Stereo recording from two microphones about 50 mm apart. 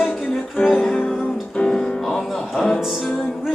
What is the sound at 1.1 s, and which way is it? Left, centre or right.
Music, centre.